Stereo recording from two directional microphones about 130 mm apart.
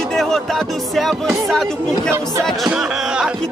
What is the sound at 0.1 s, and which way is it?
Speech, 5° left (ahead or behind).